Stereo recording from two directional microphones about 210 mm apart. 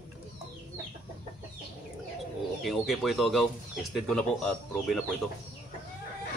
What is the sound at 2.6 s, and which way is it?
Speech, centre (ahead or behind).